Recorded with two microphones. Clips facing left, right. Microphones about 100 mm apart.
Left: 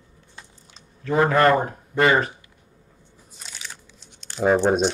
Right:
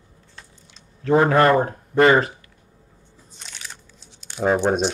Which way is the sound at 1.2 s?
10° right (ahead or behind).